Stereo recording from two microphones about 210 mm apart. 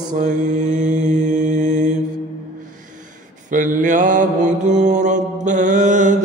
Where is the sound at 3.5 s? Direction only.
35° right (ahead or behind).